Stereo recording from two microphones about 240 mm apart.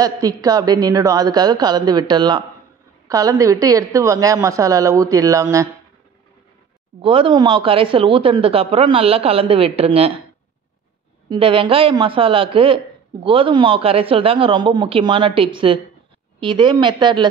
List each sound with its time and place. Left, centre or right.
0.0 s speech: centre
7.0 s speech: right
11.2 s speech: right